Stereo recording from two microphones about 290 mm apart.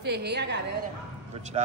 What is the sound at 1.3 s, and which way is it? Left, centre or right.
Speech, centre.